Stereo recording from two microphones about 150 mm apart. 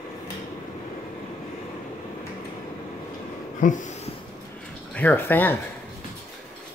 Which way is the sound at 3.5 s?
60° left (ahead or behind).